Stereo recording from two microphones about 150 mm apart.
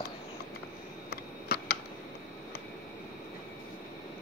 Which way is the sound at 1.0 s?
90° left.